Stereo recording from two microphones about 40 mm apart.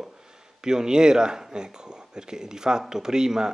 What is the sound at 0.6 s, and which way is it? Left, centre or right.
A man's voice, centre.